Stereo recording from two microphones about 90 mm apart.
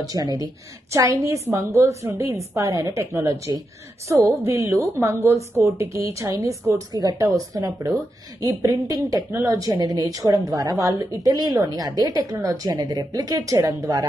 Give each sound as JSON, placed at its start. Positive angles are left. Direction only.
{"t": 0.0, "sound": "a woman's voice", "side_deg": -45}
{"t": 6.9, "sound": "a woman's voice", "side_deg": -45}